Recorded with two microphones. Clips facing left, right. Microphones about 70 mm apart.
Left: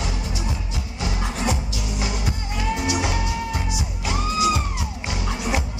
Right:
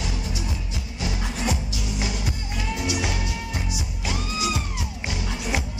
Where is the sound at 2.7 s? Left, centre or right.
Left.